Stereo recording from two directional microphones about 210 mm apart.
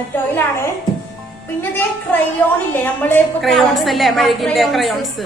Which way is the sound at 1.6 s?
10° left (ahead or behind).